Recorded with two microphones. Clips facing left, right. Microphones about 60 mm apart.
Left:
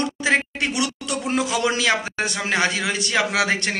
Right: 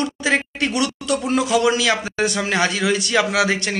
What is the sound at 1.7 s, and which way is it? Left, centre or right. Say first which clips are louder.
A man's voice: right 2 dB; left.